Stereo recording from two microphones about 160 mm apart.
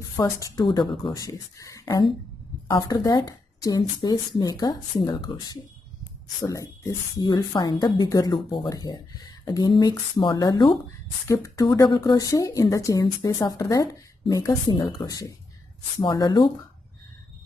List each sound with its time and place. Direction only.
0.1 s speech: 20° left (ahead or behind)